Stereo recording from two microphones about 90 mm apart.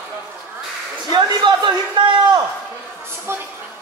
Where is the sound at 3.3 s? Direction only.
30° right (ahead or behind).